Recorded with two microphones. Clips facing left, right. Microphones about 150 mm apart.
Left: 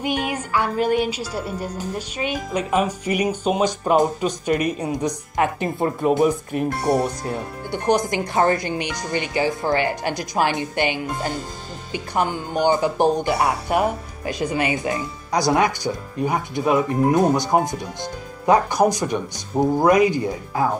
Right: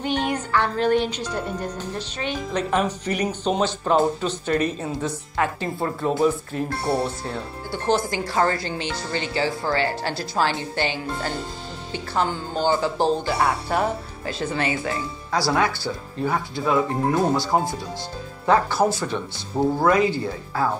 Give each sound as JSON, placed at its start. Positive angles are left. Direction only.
{"t": 0.0, "sound": "music", "side_deg": 10}